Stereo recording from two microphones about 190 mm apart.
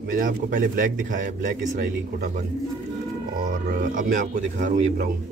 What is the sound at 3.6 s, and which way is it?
Speech, 50° right (ahead or behind).